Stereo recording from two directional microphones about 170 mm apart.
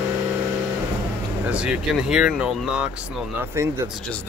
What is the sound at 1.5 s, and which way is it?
Speech, 5° right (ahead or behind).